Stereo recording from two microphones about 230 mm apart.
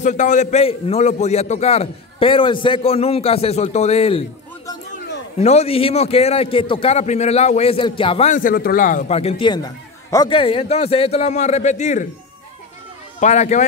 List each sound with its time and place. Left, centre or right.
0.0 s a man's voice: left
5.4 s a man's voice: left
13.2 s a man's voice: left